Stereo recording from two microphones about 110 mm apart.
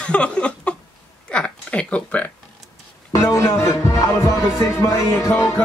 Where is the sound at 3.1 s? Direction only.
25° left (ahead or behind).